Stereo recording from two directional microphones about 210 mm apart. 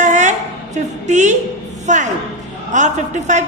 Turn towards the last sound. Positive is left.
turn(degrees=-35)  # may be behind; listen again after turning